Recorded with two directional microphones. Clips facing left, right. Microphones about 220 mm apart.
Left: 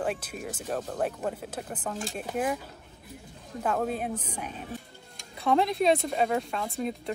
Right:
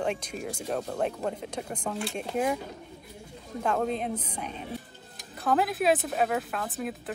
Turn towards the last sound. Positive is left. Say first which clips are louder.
# left 2 dB
turn(degrees=-5)  # may be behind; listen again after turning